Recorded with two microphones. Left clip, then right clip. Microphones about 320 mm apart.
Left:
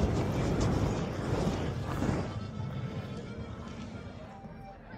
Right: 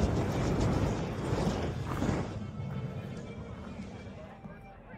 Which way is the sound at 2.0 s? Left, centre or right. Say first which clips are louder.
Even; centre.